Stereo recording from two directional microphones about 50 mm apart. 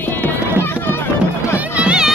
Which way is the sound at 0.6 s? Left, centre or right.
Left.